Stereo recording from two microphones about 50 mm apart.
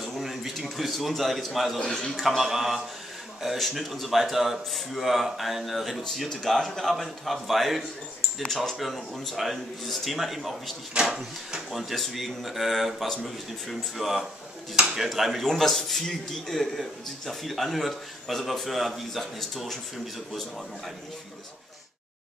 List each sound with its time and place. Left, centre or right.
0.0 s a sound: centre
1.9 s a man's voice: centre
2.2 s a man's voice: centre
10.9 s speech: centre
11.7 s a man's voice: centre